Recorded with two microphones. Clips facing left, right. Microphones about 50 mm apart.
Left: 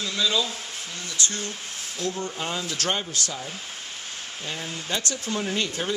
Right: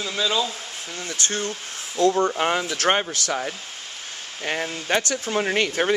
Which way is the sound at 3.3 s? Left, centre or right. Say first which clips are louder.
Right 7 dB; right.